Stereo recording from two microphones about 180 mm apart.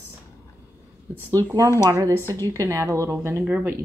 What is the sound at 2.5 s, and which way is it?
A woman's voice, 15° right (ahead or behind).